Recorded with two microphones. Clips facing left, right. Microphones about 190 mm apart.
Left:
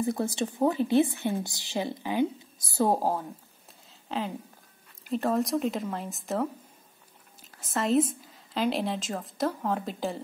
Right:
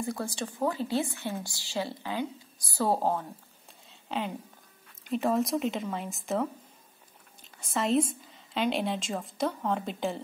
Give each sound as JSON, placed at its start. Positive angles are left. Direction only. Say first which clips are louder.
{"t": 0.0, "sound": "a woman's voice", "louder": "left 5 dB", "side_deg": 20}
{"t": 3.0, "sound": "a woman's voice", "louder": "even", "side_deg": 5}
{"t": 7.5, "sound": "a woman's voice", "louder": "left 2 dB", "side_deg": 0}